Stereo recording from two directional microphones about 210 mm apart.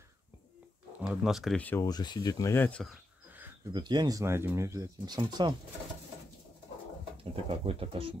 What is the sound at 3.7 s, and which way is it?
Speech, 20° right (ahead or behind).